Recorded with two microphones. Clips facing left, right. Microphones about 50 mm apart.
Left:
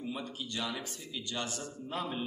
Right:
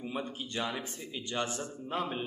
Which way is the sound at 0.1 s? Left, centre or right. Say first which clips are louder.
Right 2 dB; right.